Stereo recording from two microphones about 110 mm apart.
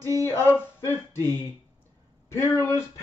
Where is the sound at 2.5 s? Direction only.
30° left (ahead or behind).